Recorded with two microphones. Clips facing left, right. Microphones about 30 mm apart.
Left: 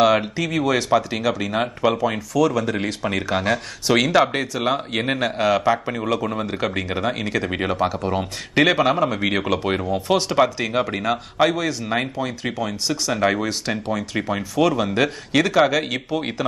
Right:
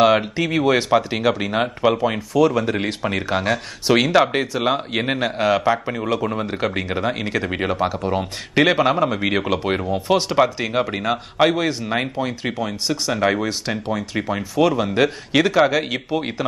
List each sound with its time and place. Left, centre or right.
0.4 s speech: right
13.1 s speech: centre